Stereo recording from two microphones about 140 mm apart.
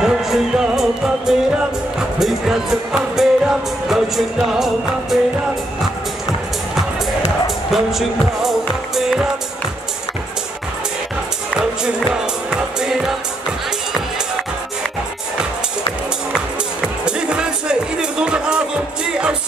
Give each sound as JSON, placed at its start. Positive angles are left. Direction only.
{"t": 0.0, "sound": "music", "side_deg": -5}
{"t": 7.4, "sound": "music", "side_deg": 0}
{"t": 11.5, "sound": "music", "side_deg": -5}
{"t": 17.0, "sound": "music", "side_deg": -5}